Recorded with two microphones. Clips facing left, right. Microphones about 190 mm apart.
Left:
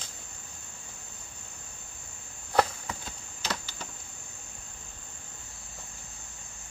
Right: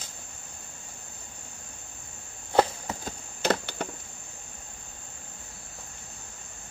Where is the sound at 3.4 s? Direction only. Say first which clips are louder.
Right 10 dB; 60° right (ahead or behind).